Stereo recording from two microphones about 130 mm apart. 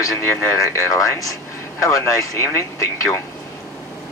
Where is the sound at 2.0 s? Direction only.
25° left (ahead or behind).